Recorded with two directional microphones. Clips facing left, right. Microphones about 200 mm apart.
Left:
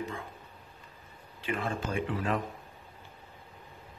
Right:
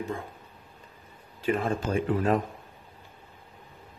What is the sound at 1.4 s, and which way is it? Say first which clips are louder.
Speech: right 6 dB; 40° right (ahead or behind).